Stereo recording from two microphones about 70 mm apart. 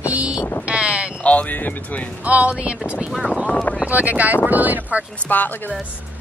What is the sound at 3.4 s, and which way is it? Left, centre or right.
Speech, centre.